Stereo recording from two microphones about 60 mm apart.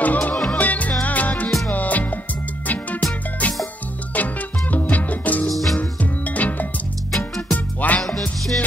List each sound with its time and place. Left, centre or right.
0.0 s music: left
4.1 s music: left
5.5 s music: centre
5.8 s music: left
7.1 s music: centre
7.5 s music: left
8.2 s music: centre